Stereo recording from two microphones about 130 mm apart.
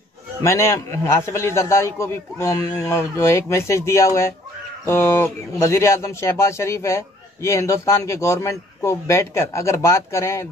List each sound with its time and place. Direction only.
0.4 s a man's voice: 20° left (ahead or behind)